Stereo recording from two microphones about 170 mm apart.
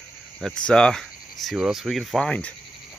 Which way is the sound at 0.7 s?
5° left (ahead or behind).